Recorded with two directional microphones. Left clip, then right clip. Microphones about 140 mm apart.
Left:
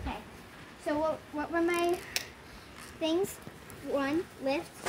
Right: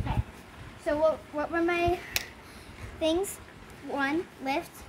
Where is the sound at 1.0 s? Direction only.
5° right (ahead or behind).